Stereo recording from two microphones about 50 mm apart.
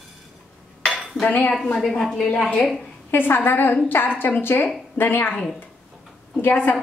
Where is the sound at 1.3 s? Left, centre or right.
Left.